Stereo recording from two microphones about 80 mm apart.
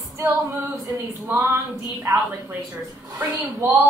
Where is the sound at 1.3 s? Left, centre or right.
Right.